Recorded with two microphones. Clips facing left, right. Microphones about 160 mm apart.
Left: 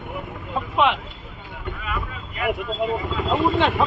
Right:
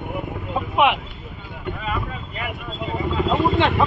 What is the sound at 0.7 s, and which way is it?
Vehicle, 15° right (ahead or behind).